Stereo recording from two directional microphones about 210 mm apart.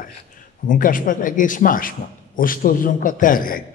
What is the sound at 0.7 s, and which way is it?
A man's voice, 40° left (ahead or behind).